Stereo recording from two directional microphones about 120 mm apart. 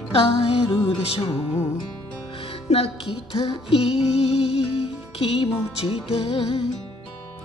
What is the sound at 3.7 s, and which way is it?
Music, 60° left (ahead or behind).